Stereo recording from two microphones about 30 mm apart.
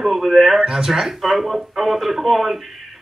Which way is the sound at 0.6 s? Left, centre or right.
Centre.